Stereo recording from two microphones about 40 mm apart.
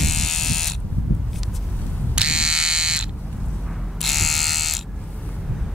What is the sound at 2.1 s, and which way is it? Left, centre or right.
Electric shaver, centre.